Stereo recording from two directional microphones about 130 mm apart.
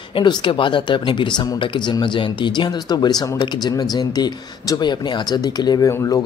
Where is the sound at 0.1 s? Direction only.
35° left (ahead or behind).